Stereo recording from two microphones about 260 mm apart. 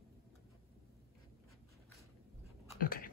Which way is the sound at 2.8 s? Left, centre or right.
Left.